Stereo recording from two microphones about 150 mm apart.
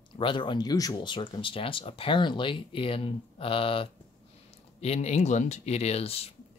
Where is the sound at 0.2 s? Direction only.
35° left (ahead or behind).